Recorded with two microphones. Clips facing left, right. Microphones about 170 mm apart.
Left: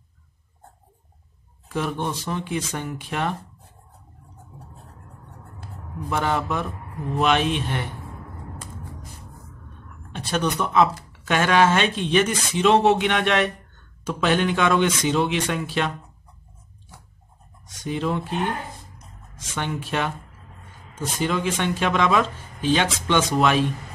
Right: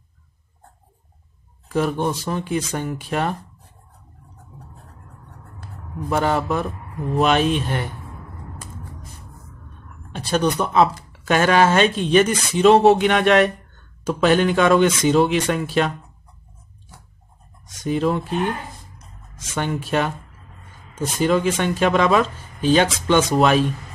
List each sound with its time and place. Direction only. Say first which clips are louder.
1.7 s speech: right 5 dB; 40° right (ahead or behind)
6.0 s speech: right 4 dB; 40° right (ahead or behind)
10.1 s speech: right 4 dB; 35° right (ahead or behind)
17.6 s speech: right 5 dB; 45° right (ahead or behind)
19.3 s speech: right 4 dB; 45° right (ahead or behind)
21.2 s speech: right 5 dB; 45° right (ahead or behind)